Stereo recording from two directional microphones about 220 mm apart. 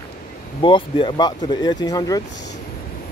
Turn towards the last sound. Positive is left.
turn(degrees=15)  # may be behind; listen again after turning